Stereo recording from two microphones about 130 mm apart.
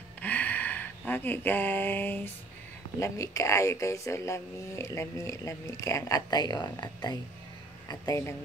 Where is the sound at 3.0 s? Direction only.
25° left (ahead or behind).